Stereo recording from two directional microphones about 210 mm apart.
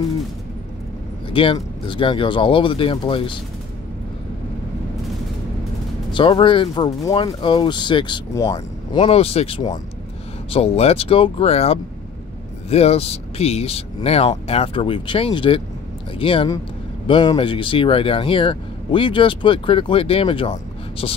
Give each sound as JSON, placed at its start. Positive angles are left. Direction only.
{"t": 1.3, "sound": "speech", "side_deg": 25}
{"t": 6.1, "sound": "speech", "side_deg": 25}